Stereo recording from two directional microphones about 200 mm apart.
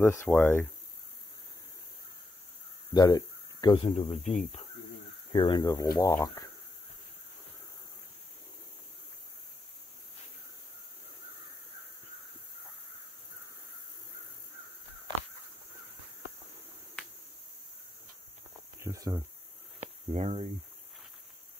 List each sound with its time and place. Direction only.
0.0 s speech: 15° left (ahead or behind)
2.9 s speech: 20° left (ahead or behind); by 4.6 s 35° left (ahead or behind)
5.3 s speech: 25° left (ahead or behind)
18.8 s cricket: 15° right (ahead or behind)
19.8 s a sound: 35° right (ahead or behind)